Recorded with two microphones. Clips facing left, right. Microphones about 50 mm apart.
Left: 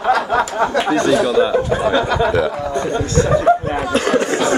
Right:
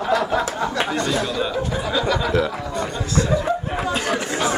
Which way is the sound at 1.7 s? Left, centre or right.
Left.